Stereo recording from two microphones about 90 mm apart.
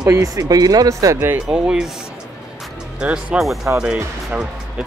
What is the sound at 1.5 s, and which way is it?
Speech, 10° right (ahead or behind).